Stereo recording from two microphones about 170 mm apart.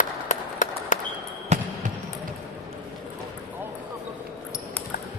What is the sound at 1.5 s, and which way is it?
Basketball bounce, 40° right (ahead or behind).